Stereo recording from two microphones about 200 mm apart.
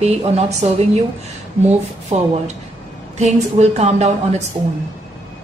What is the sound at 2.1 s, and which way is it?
Speech, 35° right (ahead or behind).